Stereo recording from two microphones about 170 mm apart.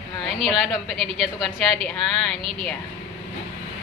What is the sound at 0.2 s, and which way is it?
A woman's voice, centre (ahead or behind).